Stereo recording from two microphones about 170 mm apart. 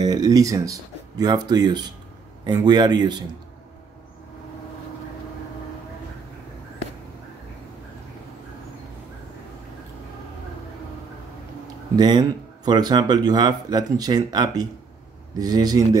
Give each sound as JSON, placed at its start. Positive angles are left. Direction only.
{"t": 0.0, "sound": "speech", "side_deg": -20}
{"t": 12.0, "sound": "speech", "side_deg": -25}